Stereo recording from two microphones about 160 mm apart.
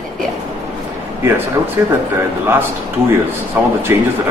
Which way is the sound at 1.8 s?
15° right (ahead or behind).